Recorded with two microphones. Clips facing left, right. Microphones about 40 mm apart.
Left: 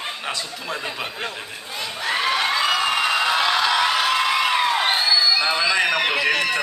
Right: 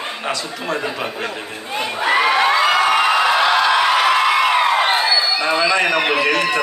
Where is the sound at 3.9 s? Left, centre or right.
Right.